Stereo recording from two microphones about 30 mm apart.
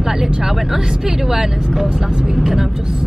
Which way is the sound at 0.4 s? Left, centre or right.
Centre.